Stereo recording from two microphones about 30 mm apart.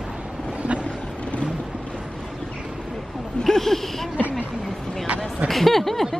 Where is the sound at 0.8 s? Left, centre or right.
Left.